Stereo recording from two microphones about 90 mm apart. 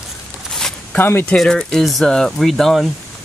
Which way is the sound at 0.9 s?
25° left (ahead or behind).